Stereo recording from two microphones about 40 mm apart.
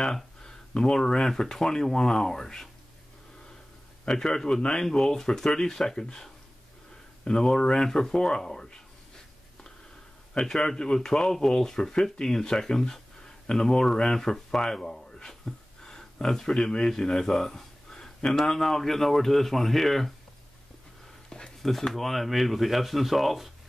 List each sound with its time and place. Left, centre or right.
0.0 s speech: centre
4.0 s a man's voice: centre
10.3 s speech: centre
15.2 s a sound: centre
16.4 s speech: left; by 20.1 s centre
21.3 s a sound: centre
21.9 s speech: centre